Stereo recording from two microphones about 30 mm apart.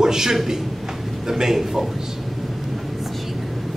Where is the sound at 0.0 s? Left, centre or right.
Centre.